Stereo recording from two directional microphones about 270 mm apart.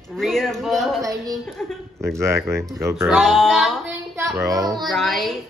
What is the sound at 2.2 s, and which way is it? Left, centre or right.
Speech, centre.